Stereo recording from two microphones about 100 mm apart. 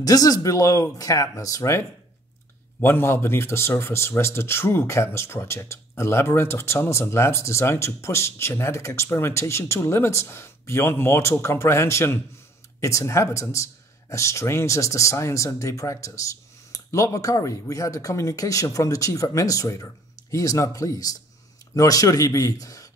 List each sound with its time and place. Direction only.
0.0 s speech: 40° left (ahead or behind)
2.8 s speech: 25° left (ahead or behind)